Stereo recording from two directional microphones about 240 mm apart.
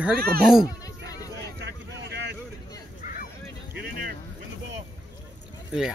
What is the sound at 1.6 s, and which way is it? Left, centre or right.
Vehicle, right.